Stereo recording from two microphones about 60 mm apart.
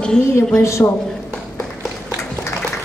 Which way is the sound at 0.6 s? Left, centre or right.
Left.